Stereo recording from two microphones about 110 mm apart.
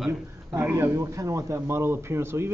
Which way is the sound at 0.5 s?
15° right (ahead or behind).